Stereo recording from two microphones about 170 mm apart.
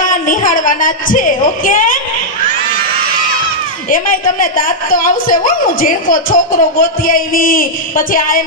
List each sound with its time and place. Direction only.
0.0 s a woman's voice: 50° left (ahead or behind)
3.9 s a woman's voice: 55° left (ahead or behind)